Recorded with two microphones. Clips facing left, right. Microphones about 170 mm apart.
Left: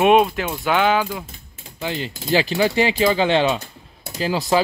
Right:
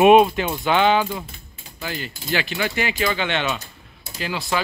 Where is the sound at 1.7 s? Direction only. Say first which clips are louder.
Left 4 dB; 25° left (ahead or behind).